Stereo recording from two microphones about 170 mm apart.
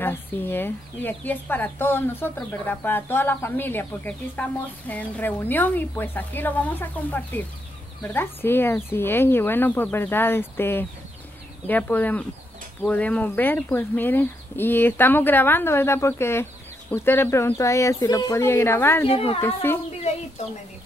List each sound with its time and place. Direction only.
0.0 s speech: 10° left (ahead or behind)
19.0 s a woman's voice: 35° left (ahead or behind)
19.4 s speech: 15° left (ahead or behind)